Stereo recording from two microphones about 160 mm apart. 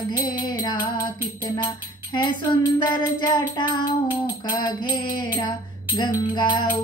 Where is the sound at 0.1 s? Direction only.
25° left (ahead or behind).